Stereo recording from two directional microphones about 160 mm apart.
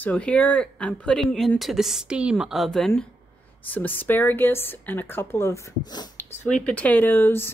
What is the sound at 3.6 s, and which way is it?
Speech, 10° left (ahead or behind).